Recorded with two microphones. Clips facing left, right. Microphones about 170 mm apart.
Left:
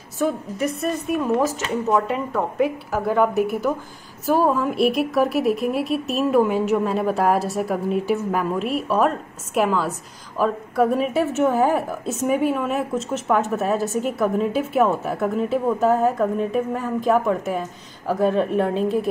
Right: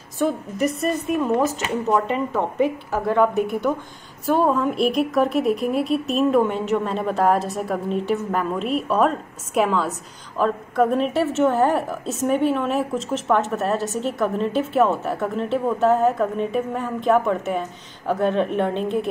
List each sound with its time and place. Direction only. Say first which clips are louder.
0.2 s a woman's voice: right 1 dB; centre (ahead or behind)